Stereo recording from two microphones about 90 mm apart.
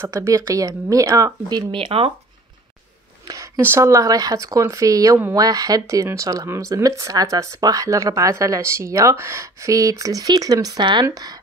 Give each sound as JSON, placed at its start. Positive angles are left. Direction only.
{"t": 0.0, "sound": "speech", "side_deg": -35}
{"t": 1.7, "sound": "speech", "side_deg": -80}
{"t": 3.3, "sound": "speech", "side_deg": -35}